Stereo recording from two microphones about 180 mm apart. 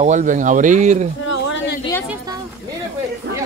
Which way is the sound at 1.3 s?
90° left.